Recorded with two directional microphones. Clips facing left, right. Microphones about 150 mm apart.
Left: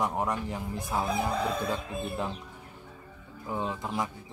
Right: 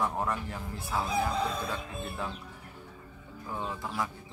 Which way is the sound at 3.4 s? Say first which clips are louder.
Left 4 dB; 20° left (ahead or behind).